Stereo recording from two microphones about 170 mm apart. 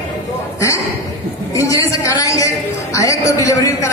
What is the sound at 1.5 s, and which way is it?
A man's voice, 20° left (ahead or behind).